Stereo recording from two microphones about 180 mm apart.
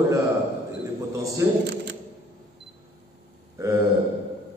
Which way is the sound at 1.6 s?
70° right (ahead or behind).